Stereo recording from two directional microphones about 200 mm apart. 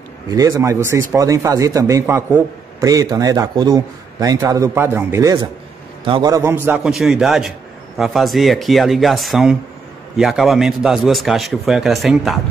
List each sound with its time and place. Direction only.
0.3 s a man's voice: 15° right (ahead or behind); by 12.4 s centre (ahead or behind)